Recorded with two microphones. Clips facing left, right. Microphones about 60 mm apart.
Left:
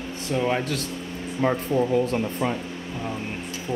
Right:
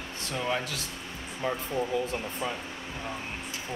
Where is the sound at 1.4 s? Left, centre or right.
Left.